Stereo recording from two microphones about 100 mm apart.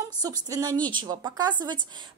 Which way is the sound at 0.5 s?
35° right (ahead or behind).